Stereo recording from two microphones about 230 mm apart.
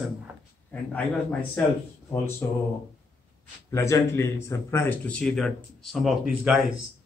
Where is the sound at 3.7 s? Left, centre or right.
Centre.